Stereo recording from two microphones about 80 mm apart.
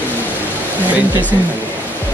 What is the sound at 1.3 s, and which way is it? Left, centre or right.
Speech, left.